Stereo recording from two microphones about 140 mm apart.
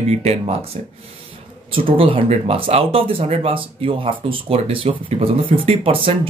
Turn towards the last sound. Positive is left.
turn(degrees=-40)  # may be behind; listen again after turning